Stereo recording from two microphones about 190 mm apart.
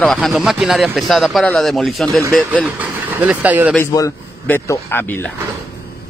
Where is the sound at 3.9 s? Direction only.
15° left (ahead or behind).